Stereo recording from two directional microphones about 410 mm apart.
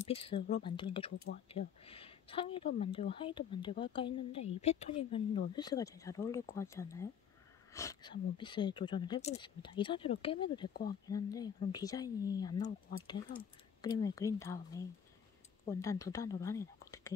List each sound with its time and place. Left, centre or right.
0.0 s speech: centre
10.7 s speech: left
11.1 s speech: centre